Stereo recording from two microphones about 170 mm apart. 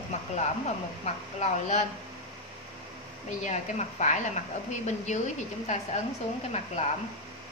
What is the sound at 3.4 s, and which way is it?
A woman's voice, 45° left (ahead or behind).